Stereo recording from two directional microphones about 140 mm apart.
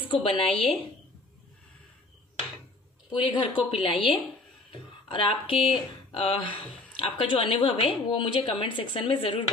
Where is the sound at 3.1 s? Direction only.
35° left (ahead or behind).